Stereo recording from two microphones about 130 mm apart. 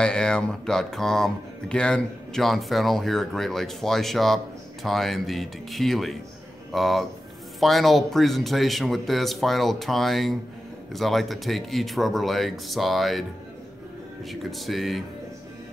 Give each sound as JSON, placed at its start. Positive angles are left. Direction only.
{"t": 0.0, "sound": "speech", "side_deg": 5}
{"t": 14.3, "sound": "speech", "side_deg": 0}